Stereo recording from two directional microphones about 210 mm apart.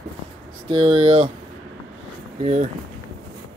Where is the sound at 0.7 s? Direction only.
25° right (ahead or behind).